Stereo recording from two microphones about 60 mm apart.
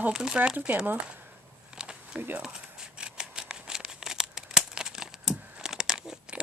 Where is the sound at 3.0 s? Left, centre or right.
Centre.